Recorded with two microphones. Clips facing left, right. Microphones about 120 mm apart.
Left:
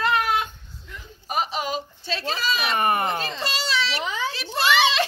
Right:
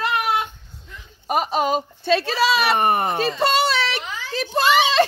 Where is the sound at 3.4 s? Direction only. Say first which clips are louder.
Right 8 dB; 55° right (ahead or behind); by 5.0 s 40° right (ahead or behind).